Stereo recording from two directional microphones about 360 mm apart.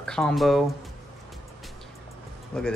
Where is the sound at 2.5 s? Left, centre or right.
Centre.